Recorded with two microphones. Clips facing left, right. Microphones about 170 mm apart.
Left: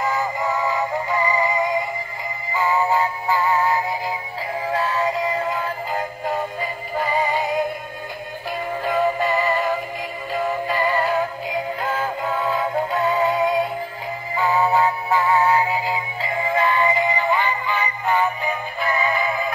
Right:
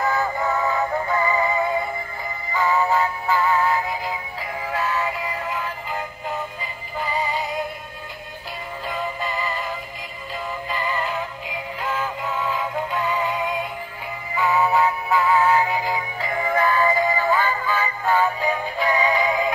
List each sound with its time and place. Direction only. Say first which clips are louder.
0.0 s synthetic singing: even; 5° left (ahead or behind)
2.9 s synthetic singing: left 1 dB; 30° left (ahead or behind)
4.6 s synthetic singing: left 3 dB; 35° left (ahead or behind); by 7.5 s 50° left (ahead or behind)
8.8 s synthetic singing: left 8 dB; 50° left (ahead or behind); by 19.5 s centre (ahead or behind)